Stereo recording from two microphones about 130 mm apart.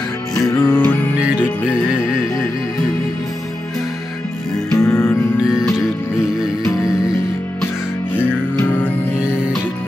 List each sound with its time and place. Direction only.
0.5 s music: 20° left (ahead or behind)
1.2 s music: 10° right (ahead or behind)
4.7 s music: 20° left (ahead or behind)
5.4 s music: 5° right (ahead or behind)
8.5 s music: 10° left (ahead or behind)